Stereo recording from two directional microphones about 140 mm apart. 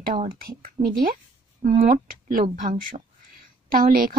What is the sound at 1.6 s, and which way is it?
Speech, 75° right (ahead or behind).